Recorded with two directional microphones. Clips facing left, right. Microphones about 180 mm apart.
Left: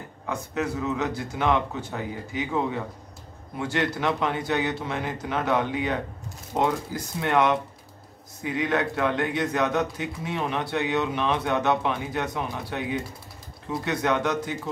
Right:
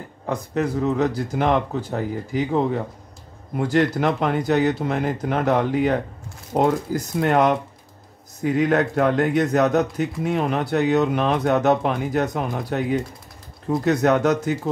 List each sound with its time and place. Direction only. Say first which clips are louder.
0.3 s speech: right 5 dB; 35° right (ahead or behind)